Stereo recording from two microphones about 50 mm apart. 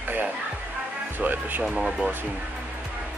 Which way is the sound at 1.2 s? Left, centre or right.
Right.